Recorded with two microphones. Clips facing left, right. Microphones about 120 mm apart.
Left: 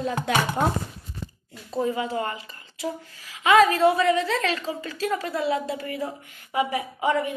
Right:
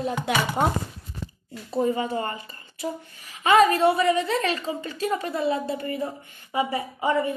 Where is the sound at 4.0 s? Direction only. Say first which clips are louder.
Even; 5° right (ahead or behind).